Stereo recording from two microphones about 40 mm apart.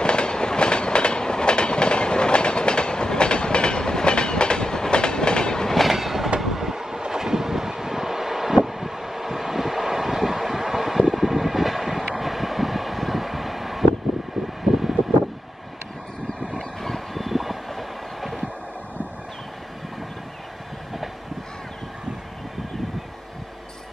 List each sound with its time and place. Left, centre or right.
0.0 s train: left
5.7 s train: centre
12.2 s vehicle: centre
16.8 s train: centre